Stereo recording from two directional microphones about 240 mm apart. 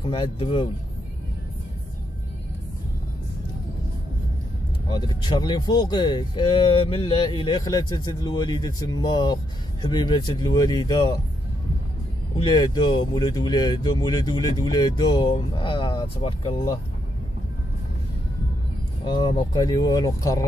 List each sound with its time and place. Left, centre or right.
0.0 s speech: left
4.8 s speech: centre
12.4 s speech: centre
19.0 s speech: centre